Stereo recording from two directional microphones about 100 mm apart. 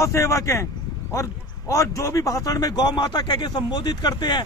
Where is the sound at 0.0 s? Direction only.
30° left (ahead or behind).